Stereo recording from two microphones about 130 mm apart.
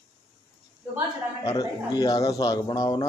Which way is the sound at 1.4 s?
30° left (ahead or behind).